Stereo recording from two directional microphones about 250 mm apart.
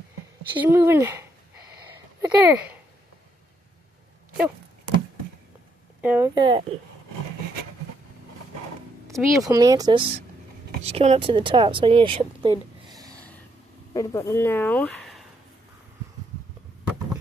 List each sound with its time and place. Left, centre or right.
0.6 s speech: centre
5.9 s speech: centre
9.1 s a woman's voice: centre
13.9 s speech: centre